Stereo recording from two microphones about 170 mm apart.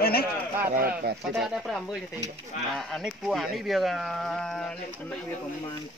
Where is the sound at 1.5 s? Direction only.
Centre (ahead or behind).